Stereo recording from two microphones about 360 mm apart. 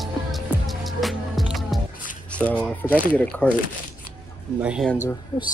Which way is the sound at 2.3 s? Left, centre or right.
Centre.